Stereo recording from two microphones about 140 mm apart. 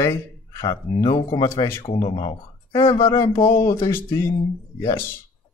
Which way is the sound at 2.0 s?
35° left (ahead or behind).